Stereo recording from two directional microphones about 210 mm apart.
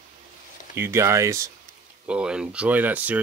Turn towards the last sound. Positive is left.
turn(degrees=-10)  # may be behind; listen again after turning